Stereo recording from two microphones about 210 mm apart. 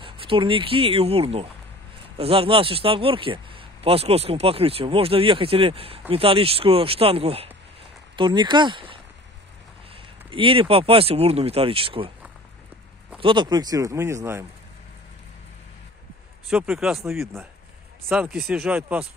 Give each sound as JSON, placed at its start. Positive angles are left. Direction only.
{"t": 0.0, "sound": "speech", "side_deg": -25}
{"t": 13.2, "sound": "speech", "side_deg": -20}
{"t": 16.4, "sound": "speech", "side_deg": -5}